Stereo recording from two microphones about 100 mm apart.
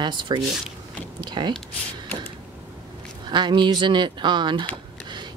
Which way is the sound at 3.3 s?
50° right (ahead or behind).